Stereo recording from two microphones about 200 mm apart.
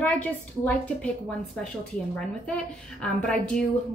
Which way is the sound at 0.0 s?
5° left (ahead or behind).